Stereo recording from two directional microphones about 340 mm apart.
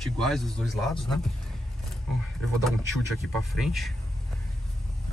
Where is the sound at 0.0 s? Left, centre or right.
Centre.